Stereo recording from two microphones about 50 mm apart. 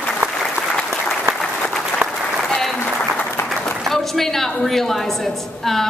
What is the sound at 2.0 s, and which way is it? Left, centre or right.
Applause, right.